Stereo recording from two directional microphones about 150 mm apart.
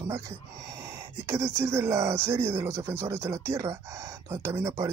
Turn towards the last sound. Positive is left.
turn(degrees=-20)  # may be behind; listen again after turning